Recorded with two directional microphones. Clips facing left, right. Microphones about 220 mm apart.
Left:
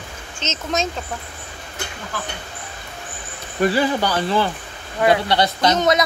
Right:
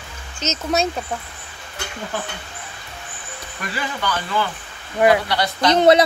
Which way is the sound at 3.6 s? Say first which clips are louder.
Left 10 dB; 35° left (ahead or behind).